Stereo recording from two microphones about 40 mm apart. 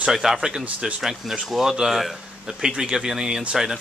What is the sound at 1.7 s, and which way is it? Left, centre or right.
Speech, centre.